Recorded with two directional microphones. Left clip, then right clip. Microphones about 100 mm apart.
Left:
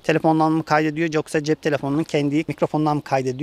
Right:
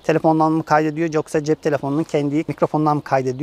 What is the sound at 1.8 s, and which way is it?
Speech, 85° left.